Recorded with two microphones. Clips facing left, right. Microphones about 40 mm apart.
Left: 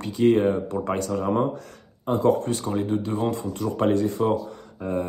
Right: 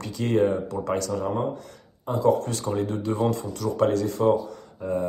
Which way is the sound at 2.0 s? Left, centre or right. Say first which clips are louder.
Left 1 dB; left.